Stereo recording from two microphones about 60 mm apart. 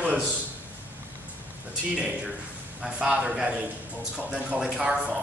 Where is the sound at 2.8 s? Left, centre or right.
Centre.